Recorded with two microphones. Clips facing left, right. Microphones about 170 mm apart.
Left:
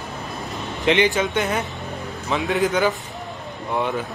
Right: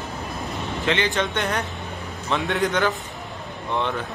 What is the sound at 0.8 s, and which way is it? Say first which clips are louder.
Speech: left 6 dB; 15° left (ahead or behind).